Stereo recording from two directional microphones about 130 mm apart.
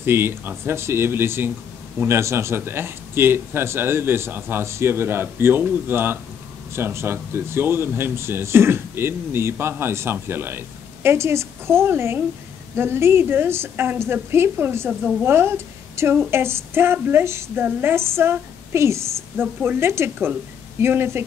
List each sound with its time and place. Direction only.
0.0 s speech: 15° right (ahead or behind)